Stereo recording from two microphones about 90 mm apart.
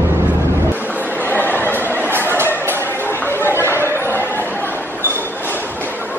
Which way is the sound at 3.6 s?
25° right (ahead or behind).